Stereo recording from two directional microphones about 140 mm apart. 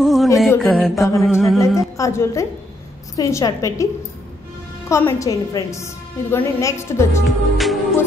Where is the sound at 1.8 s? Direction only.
20° left (ahead or behind).